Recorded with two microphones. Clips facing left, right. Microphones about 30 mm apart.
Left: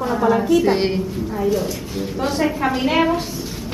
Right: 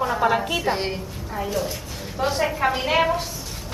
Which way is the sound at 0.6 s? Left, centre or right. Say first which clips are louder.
Left 6 dB; centre.